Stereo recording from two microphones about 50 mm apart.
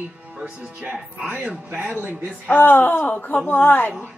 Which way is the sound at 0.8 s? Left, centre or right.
Right.